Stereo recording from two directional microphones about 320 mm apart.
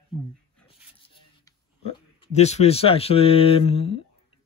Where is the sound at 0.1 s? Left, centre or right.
Centre.